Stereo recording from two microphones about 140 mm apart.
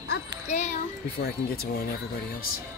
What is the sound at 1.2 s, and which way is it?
Speech, 90° left.